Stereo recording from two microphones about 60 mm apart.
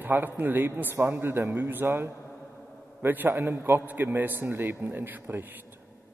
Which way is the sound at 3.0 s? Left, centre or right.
Right.